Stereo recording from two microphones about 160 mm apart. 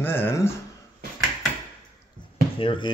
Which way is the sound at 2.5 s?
35° left (ahead or behind).